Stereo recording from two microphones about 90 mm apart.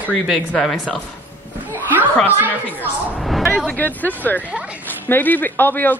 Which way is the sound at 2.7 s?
20° left (ahead or behind).